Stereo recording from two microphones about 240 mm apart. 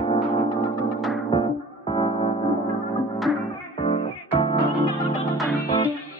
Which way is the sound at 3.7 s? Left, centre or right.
Left.